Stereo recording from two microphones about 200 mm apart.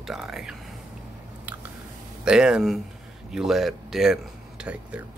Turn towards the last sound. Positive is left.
turn(degrees=-5)  # may be behind; listen again after turning